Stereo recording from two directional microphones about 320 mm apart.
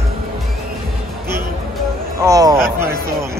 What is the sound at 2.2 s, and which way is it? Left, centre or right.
Speech, centre.